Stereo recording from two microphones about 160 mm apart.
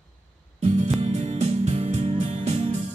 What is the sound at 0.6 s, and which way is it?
Music, 45° right (ahead or behind).